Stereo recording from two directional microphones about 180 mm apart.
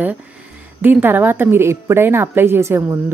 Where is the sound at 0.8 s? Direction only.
10° right (ahead or behind).